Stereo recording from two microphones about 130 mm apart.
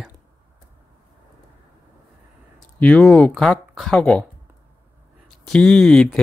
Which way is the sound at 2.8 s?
5° left (ahead or behind).